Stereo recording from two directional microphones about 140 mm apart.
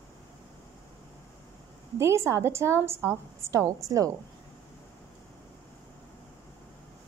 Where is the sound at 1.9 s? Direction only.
20° right (ahead or behind).